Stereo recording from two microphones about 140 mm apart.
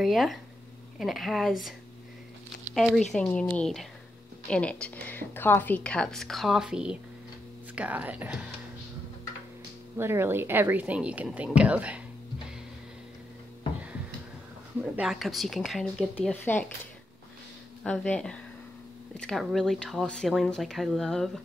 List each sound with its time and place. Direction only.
0.0 s speech: centre (ahead or behind)
2.7 s speech: centre (ahead or behind)
9.9 s speech: 15° right (ahead or behind)
14.8 s speech: 5° right (ahead or behind)
16.2 s speech: 10° left (ahead or behind)
17.8 s speech: 10° left (ahead or behind)